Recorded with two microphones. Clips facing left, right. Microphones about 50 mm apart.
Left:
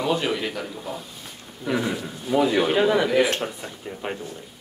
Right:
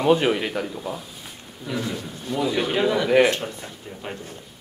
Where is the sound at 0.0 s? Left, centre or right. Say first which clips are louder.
Right 5 dB; right.